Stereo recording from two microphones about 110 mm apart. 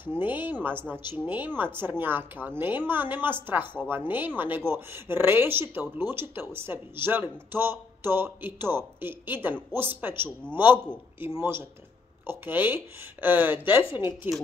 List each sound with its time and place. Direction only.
0.0 s speech: 20° right (ahead or behind)